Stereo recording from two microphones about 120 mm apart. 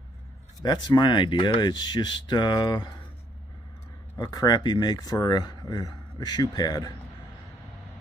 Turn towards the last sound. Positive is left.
turn(degrees=30)  # may be behind; listen again after turning